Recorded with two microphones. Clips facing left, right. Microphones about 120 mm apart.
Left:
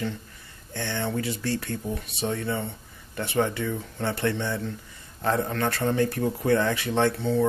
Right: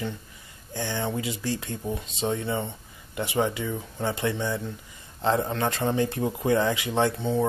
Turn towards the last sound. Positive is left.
turn(degrees=-15)  # may be behind; listen again after turning